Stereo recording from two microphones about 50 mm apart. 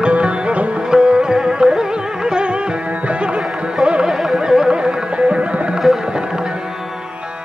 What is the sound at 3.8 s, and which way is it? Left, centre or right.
Carnatic music, centre.